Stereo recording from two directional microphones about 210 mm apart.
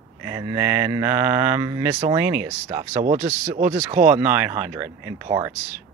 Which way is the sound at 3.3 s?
35° right (ahead or behind).